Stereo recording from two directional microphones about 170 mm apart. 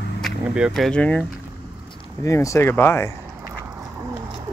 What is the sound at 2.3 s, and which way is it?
Speech, 15° left (ahead or behind).